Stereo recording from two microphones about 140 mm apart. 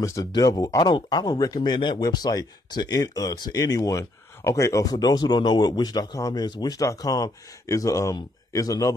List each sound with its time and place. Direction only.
0.0 s speech: 25° left (ahead or behind)